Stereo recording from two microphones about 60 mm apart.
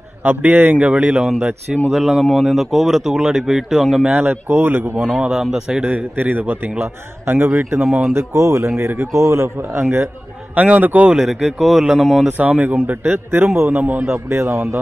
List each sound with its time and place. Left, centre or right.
0.2 s speech: right
1.9 s speech: centre
4.1 s a man's voice: right
4.9 s speech: centre
5.9 s a man's voice: right
10.5 s speech: right
11.1 s speech: centre
12.3 s a man's voice: right
14.1 s a man's voice: right